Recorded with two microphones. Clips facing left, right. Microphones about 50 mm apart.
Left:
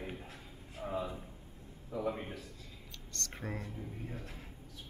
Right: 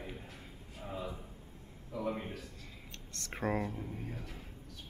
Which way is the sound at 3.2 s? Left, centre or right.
Right.